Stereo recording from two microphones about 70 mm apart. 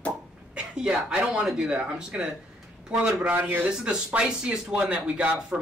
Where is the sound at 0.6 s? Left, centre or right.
Centre.